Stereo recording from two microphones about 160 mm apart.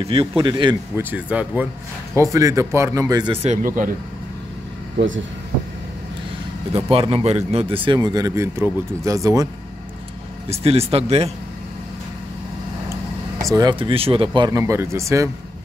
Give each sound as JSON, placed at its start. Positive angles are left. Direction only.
{"t": 0.0, "sound": "a man's voice", "side_deg": -35}
{"t": 0.9, "sound": "speech", "side_deg": -10}
{"t": 2.1, "sound": "speech", "side_deg": -20}
{"t": 3.4, "sound": "speech", "side_deg": -55}
{"t": 6.7, "sound": "a man's voice", "side_deg": -35}
{"t": 10.5, "sound": "a man's voice", "side_deg": -40}
{"t": 13.5, "sound": "a man's voice", "side_deg": -25}
{"t": 14.6, "sound": "speech", "side_deg": -15}